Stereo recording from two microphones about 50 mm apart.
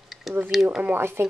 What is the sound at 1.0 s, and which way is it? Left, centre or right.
Speech, right.